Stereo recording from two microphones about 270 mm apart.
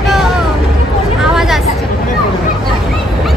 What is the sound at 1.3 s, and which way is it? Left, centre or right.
Speech, centre.